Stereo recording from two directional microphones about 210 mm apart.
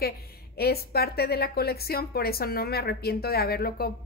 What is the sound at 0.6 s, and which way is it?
A woman's voice, 50° left (ahead or behind).